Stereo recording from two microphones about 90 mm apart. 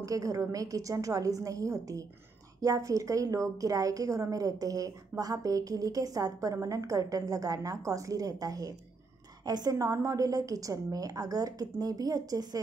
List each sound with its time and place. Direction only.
0.0 s a woman's voice: 40° right (ahead or behind)